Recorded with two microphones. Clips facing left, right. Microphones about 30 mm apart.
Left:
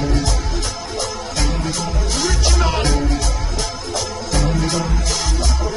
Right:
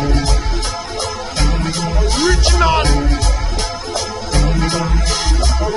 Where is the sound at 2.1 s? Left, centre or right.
Right.